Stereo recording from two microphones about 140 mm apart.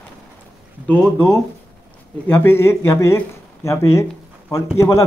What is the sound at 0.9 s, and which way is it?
Speech, 15° left (ahead or behind).